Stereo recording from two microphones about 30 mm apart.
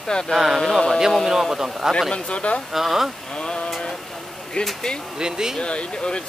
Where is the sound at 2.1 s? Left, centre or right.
Left.